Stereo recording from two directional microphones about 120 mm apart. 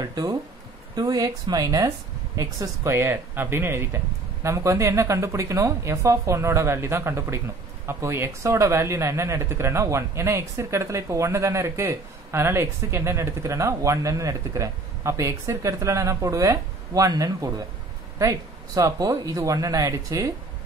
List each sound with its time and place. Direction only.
0.0 s speech: 35° right (ahead or behind)